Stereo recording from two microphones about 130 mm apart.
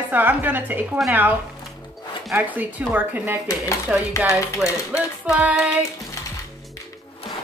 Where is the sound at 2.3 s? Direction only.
15° right (ahead or behind).